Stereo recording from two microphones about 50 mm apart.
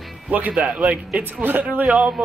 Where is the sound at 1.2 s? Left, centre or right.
Right.